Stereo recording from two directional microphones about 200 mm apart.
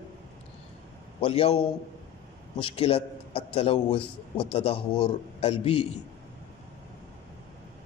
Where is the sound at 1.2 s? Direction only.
30° left (ahead or behind).